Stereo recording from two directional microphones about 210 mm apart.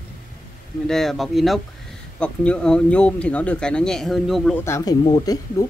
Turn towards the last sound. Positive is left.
turn(degrees=15)  # may be behind; listen again after turning